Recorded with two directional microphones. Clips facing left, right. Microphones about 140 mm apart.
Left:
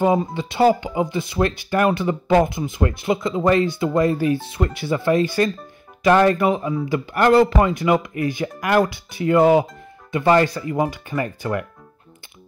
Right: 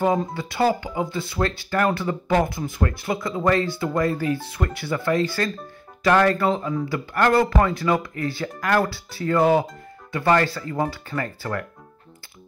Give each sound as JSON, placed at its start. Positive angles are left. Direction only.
{"t": 0.0, "sound": "speech", "side_deg": 15}